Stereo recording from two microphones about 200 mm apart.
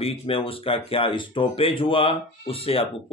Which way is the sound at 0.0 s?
30° left (ahead or behind).